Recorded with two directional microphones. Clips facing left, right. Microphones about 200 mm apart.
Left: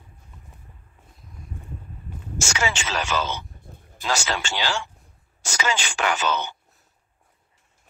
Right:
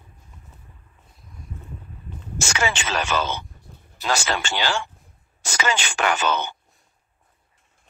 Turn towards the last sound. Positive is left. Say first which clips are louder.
# right 2 dB
turn(degrees=-55)  # may be behind; listen again after turning